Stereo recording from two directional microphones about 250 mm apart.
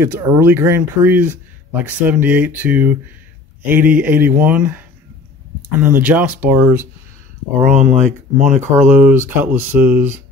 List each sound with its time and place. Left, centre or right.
0.0 s speech: centre
7.5 s speech: right
8.8 s speech: centre